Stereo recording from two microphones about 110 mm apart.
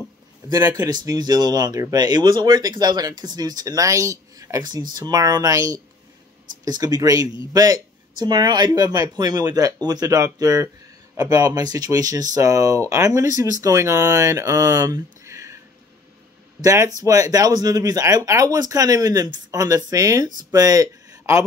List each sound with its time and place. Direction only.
0.7 s speech: 35° right (ahead or behind)
16.6 s speech: 30° right (ahead or behind)